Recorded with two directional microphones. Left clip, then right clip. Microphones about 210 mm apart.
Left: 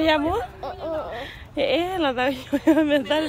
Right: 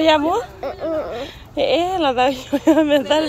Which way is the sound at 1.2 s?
10° left (ahead or behind).